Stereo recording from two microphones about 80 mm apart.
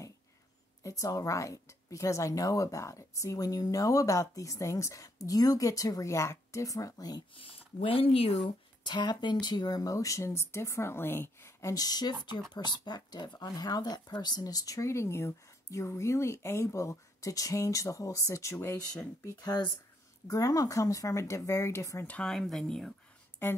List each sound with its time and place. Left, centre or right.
0.8 s a woman's voice: left
8.8 s a woman's voice: left
11.7 s speech: left
19.4 s speech: left
20.2 s a woman's voice: left
22.0 s speech: centre
22.3 s speech: centre